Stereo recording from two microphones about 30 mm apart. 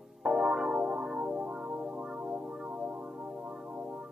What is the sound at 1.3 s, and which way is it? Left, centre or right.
Music, right.